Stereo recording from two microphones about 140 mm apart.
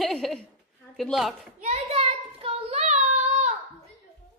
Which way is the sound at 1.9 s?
45° right (ahead or behind).